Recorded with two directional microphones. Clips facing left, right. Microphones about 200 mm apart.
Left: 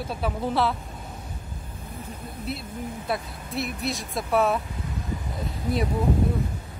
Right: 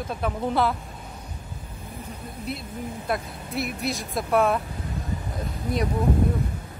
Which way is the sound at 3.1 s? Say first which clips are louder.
Right 2 dB; centre (ahead or behind).